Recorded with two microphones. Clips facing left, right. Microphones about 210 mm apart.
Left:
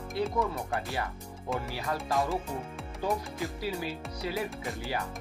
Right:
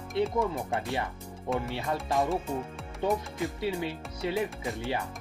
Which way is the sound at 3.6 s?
25° right (ahead or behind).